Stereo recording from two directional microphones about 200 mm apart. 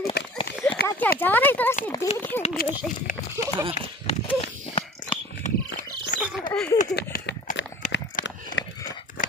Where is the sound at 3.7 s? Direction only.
30° left (ahead or behind).